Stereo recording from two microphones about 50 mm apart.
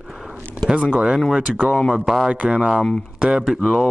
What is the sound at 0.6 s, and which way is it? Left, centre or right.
Speech, right.